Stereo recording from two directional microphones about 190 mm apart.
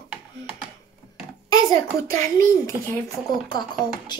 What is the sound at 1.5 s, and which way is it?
Speech, 15° left (ahead or behind).